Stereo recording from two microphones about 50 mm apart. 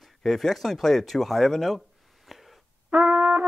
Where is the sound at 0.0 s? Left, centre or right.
Centre.